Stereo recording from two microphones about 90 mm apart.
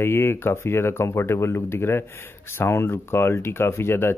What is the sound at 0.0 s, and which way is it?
Speech, 25° left (ahead or behind).